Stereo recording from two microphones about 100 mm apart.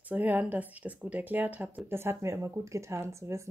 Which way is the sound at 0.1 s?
15° right (ahead or behind).